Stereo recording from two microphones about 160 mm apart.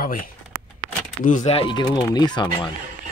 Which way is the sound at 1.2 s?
55° left (ahead or behind).